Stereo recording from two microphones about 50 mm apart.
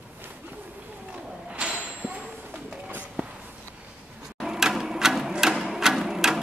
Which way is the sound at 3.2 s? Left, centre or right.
Right.